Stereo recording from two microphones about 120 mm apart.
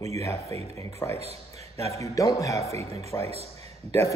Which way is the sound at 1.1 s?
60° right (ahead or behind).